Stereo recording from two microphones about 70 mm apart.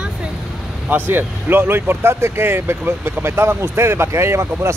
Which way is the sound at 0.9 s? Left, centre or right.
Right.